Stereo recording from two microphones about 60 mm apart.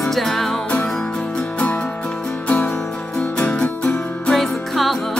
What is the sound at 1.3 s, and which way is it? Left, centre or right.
Music, left.